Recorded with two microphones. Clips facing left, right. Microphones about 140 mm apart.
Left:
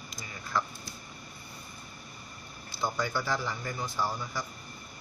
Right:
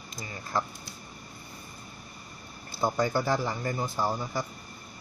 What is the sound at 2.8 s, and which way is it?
A man's voice, 40° right (ahead or behind).